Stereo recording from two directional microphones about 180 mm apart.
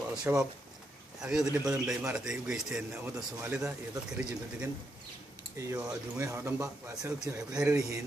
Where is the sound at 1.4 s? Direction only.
20° right (ahead or behind).